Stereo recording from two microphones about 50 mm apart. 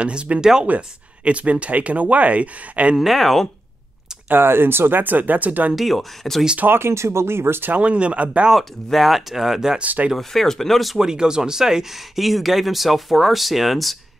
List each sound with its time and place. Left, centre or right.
0.0 s speech: right
3.0 s speech: centre
4.3 s speech: right
5.8 s speech: centre
6.6 s speech: right
6.9 s speech: right
7.8 s speech: right
8.5 s speech: centre
9.8 s speech: right
10.1 s speech: centre
11.0 s speech: centre